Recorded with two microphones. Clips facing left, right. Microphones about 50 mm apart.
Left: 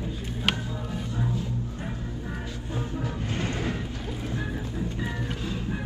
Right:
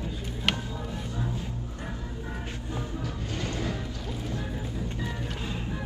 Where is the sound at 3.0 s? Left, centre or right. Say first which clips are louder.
Left 3 dB; left.